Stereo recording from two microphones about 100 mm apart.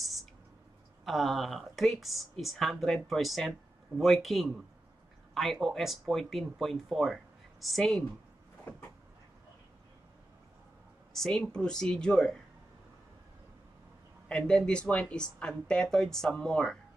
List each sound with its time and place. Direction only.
0.0 s a sound: centre (ahead or behind)
1.0 s speech: centre (ahead or behind)
11.1 s speech: 5° left (ahead or behind)
14.3 s speech: 10° left (ahead or behind)